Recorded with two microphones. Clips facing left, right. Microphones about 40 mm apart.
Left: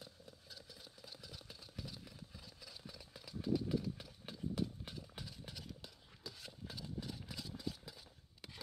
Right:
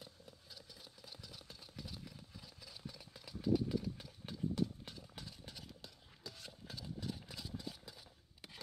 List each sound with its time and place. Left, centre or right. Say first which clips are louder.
0.0 s vehicle: even; centre
2.6 s engine: right 2 dB; centre